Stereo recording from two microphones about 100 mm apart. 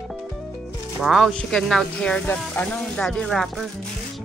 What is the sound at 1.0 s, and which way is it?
Speech, centre (ahead or behind).